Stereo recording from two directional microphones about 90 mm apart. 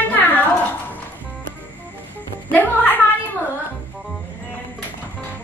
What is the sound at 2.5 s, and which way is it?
Music, 20° left (ahead or behind).